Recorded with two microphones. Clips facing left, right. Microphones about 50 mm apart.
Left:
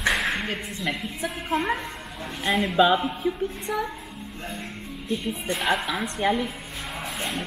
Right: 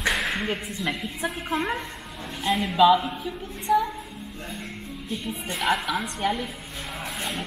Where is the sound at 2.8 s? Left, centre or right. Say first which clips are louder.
Right 3 dB; left.